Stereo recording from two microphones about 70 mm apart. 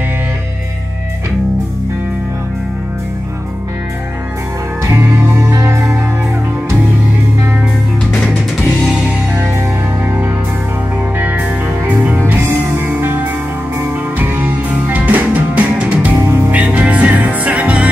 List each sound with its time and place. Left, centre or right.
4.9 s music: right
8.1 s music: centre
10.0 s music: right
11.1 s music: right
16.3 s music: right
16.5 s music: centre